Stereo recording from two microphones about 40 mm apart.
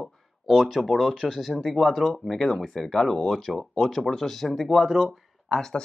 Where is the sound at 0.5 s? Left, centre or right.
Centre.